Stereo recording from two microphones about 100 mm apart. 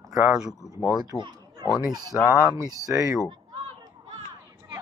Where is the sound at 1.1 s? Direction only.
30° left (ahead or behind).